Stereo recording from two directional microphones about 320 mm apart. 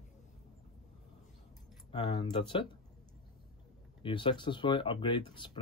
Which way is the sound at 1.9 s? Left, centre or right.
Centre.